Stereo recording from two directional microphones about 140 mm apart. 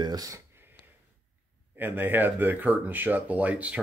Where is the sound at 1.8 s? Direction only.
15° right (ahead or behind).